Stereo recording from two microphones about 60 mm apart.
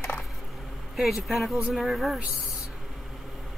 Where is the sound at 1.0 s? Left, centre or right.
Centre.